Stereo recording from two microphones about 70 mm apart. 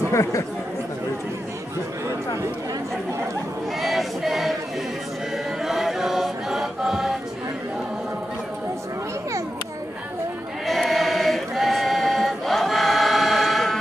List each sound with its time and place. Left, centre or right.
0.1 s speech: left
3.8 s choir: centre
5.6 s choir: centre
10.7 s choir: centre